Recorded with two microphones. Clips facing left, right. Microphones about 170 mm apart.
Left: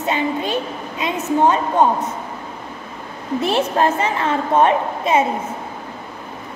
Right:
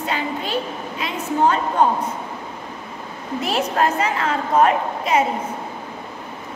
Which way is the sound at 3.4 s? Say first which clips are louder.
Left 3 dB; 30° left (ahead or behind).